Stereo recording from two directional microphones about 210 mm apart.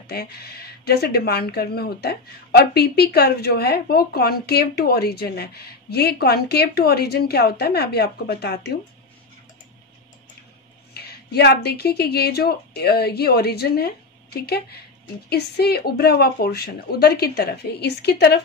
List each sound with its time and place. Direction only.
0.0 s speech: 50° left (ahead or behind)
10.9 s speech: 50° left (ahead or behind)